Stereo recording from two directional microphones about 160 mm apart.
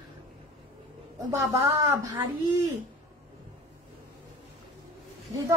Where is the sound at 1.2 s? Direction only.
20° right (ahead or behind).